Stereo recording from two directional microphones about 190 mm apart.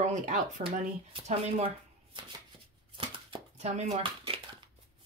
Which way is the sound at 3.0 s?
30° right (ahead or behind).